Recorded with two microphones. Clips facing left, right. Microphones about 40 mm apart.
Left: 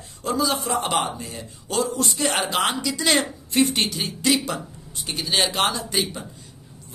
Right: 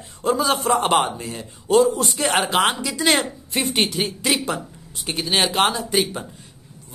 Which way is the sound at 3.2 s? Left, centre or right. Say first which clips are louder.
Left 3 dB; centre.